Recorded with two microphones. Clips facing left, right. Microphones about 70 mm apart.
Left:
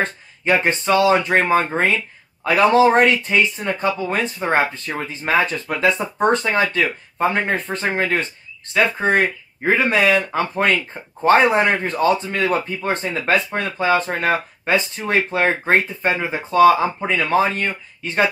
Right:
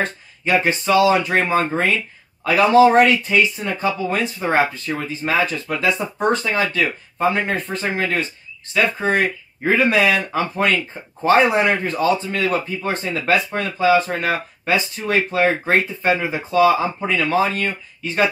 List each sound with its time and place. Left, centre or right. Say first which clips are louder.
0.5 s speech: even; left
8.7 s speech: left 1 dB; left
9.6 s speech: right 1 dB; left